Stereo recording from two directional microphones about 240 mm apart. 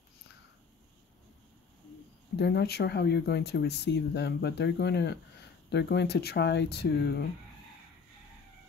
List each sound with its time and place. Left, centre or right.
2.3 s speech: left